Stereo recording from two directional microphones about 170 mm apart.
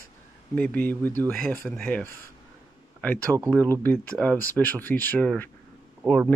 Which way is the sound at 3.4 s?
15° right (ahead or behind).